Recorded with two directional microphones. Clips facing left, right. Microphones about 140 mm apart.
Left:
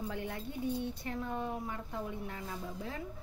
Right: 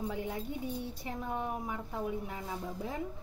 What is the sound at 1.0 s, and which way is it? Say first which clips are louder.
A woman's voice: right 1 dB; 15° right (ahead or behind).